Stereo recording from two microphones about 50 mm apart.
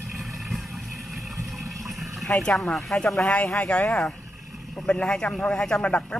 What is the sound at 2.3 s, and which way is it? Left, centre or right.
Speech, left.